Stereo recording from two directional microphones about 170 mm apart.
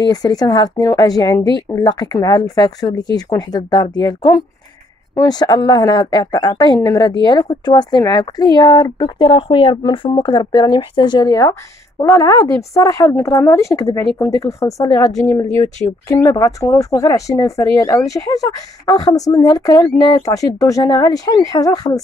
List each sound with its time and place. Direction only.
0.1 s a woman's voice: 20° left (ahead or behind)